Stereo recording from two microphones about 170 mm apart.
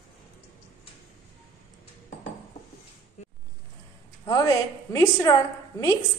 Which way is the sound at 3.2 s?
45° left (ahead or behind).